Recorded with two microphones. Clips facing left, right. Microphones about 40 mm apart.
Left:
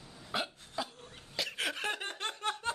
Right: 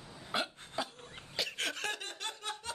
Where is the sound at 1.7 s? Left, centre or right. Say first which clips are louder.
Left 2 dB; centre.